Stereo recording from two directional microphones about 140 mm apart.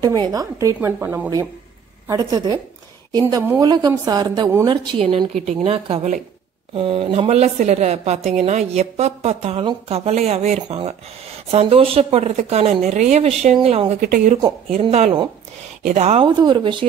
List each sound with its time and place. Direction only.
0.3 s a woman's voice: 25° right (ahead or behind)
0.7 s speech: 10° right (ahead or behind)
2.0 s a woman's voice: 25° right (ahead or behind); by 13.9 s 45° right (ahead or behind)
14.0 s speech: 90° right
14.7 s a woman's voice: 50° right (ahead or behind)
16.2 s speech: 30° right (ahead or behind)